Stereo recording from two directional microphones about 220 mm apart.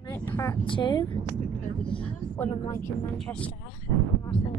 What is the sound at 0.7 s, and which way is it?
Speech, 20° left (ahead or behind).